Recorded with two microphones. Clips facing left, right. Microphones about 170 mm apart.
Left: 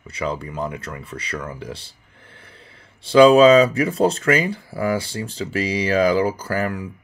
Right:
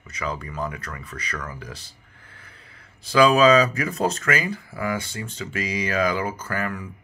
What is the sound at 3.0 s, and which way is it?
Speech, 30° left (ahead or behind).